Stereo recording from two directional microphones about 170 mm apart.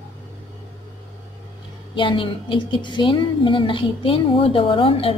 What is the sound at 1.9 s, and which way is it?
A woman's voice, 30° left (ahead or behind).